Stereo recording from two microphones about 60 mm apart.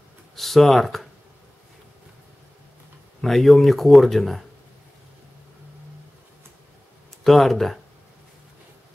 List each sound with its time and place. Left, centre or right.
0.4 s speech: centre
3.2 s speech: centre
7.2 s speech: centre